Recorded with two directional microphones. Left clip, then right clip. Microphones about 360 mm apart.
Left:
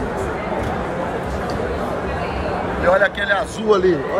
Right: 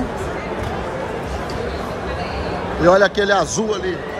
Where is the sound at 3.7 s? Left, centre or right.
Centre.